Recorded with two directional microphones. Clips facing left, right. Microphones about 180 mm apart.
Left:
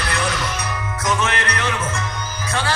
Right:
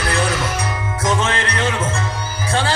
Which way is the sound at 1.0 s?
25° right (ahead or behind).